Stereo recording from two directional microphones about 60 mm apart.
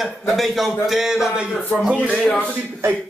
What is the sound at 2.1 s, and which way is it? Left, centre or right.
Speech, centre.